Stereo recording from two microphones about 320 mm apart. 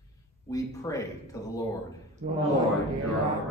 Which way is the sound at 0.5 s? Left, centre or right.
Centre.